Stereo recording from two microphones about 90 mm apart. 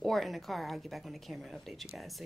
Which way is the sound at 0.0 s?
Centre (ahead or behind).